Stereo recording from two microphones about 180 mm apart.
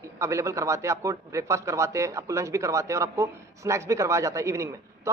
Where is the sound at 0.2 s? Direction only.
15° right (ahead or behind).